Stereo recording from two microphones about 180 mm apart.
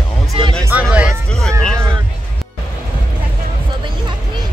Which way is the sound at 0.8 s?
5° right (ahead or behind).